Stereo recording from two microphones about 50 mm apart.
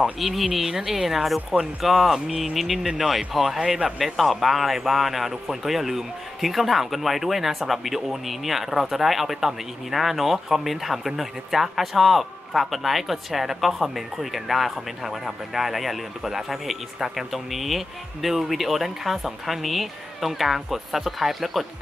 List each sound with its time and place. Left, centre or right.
0.0 s a man's voice: centre
4.0 s a man's voice: centre